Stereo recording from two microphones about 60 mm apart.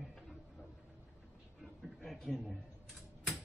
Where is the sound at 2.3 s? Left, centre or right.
Centre.